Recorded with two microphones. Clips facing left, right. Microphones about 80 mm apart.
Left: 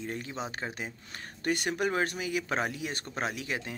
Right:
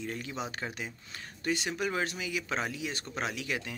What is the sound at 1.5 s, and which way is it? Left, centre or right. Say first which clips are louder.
Speech: left 3 dB; left.